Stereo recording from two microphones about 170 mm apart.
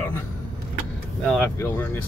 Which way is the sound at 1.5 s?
15° left (ahead or behind).